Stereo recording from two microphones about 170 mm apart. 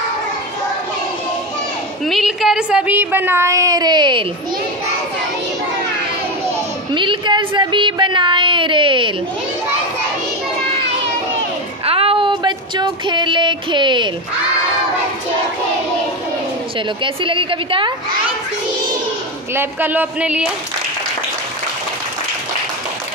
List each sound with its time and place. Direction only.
2.0 s a woman's voice: centre (ahead or behind); by 4.3 s 25° right (ahead or behind)
6.9 s speech: 30° right (ahead or behind)
11.8 s a sound: 35° right (ahead or behind)
16.7 s a woman's voice: 30° right (ahead or behind)
19.5 s a woman's voice: 10° right (ahead or behind)